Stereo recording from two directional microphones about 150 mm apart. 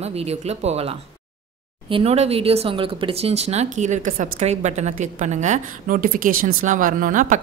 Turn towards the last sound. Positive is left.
turn(degrees=-60)  # may be behind; listen again after turning